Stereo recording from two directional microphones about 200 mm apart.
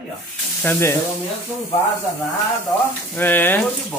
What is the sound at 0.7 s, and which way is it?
Speech, 10° left (ahead or behind).